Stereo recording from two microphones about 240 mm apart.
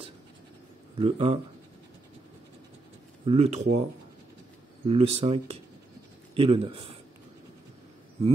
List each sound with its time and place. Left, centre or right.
0.9 s speech: right
3.3 s speech: right
4.8 s speech: right